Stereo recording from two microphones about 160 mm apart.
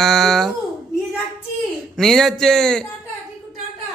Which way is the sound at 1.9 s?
Centre (ahead or behind).